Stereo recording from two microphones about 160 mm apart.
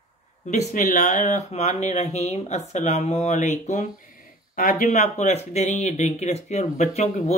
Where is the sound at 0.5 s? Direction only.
50° left (ahead or behind).